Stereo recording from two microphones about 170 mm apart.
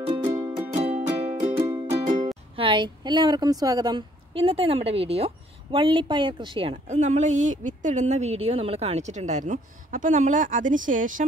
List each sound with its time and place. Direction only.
0.0 s music: 30° right (ahead or behind)
0.3 s music: 15° right (ahead or behind)
0.7 s music: 40° right (ahead or behind)
1.7 s music: 20° right (ahead or behind)
2.5 s a woman's voice: 30° right (ahead or behind)
6.9 s speech: 45° right (ahead or behind)